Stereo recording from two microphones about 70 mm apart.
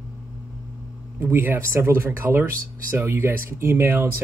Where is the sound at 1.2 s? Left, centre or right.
Right.